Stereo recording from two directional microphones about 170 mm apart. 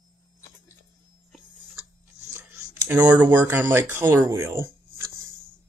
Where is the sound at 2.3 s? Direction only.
15° right (ahead or behind).